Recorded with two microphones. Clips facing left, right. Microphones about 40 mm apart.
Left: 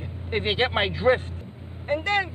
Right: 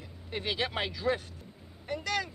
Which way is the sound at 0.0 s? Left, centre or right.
Left.